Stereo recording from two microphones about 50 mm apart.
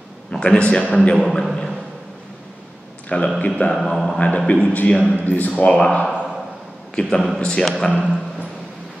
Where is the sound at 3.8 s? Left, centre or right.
Centre.